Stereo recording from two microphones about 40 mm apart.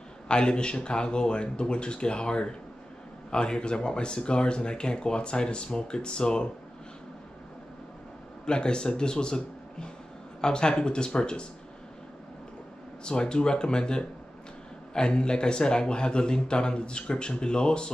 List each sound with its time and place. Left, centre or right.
0.3 s speech: left
8.5 s speech: left
13.0 s speech: left